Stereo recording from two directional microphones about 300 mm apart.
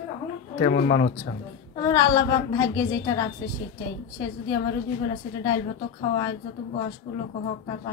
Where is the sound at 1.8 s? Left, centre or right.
Centre.